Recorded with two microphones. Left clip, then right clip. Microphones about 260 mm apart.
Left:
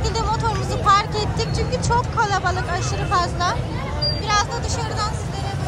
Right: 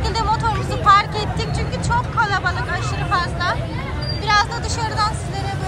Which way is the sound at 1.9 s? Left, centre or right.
Left.